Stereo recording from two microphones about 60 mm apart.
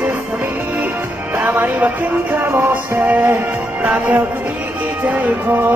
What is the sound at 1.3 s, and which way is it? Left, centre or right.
Music, right.